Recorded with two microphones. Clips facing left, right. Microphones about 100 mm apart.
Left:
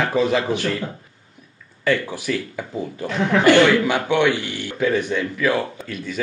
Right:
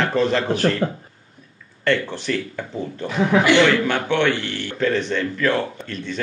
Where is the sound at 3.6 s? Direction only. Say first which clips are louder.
Left 1 dB; 10° left (ahead or behind).